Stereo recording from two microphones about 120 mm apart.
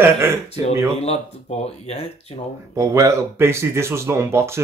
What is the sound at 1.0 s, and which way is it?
Speech, 65° left (ahead or behind).